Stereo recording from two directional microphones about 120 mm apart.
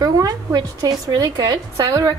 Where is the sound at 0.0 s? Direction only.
30° right (ahead or behind).